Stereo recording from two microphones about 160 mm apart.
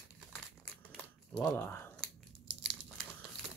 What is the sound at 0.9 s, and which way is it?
Crumpling, 5° left (ahead or behind).